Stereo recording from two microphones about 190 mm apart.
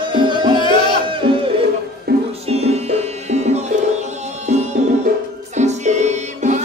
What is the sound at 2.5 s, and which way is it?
Music, 35° right (ahead or behind).